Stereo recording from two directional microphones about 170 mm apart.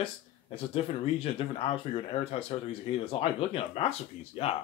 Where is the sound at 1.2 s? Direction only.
35° left (ahead or behind).